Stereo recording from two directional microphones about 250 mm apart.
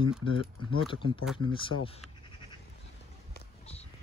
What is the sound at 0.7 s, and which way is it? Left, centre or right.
Speech, centre.